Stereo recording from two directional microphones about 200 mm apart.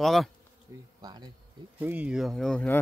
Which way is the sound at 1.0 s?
20° right (ahead or behind).